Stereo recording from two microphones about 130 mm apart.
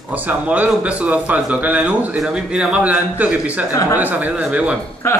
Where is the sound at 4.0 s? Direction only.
15° right (ahead or behind).